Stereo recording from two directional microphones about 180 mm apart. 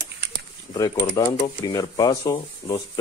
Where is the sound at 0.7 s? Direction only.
20° left (ahead or behind).